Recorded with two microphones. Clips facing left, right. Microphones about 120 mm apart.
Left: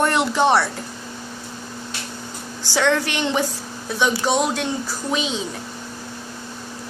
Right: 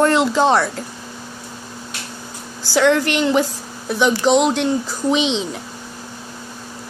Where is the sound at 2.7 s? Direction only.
10° right (ahead or behind).